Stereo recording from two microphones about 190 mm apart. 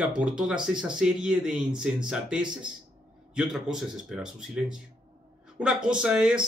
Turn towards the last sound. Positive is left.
turn(degrees=-5)  # may be behind; listen again after turning